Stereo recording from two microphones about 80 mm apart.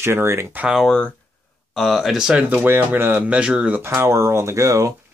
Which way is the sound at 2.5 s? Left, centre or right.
Right.